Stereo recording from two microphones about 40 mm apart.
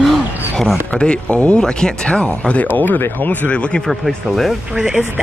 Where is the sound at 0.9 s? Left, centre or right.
Left.